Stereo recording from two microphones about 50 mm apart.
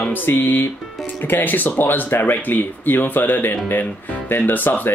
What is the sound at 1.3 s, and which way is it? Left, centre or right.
Speech, left.